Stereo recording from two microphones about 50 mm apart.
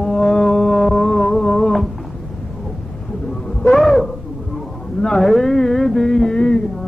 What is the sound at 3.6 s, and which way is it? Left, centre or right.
Owl, centre.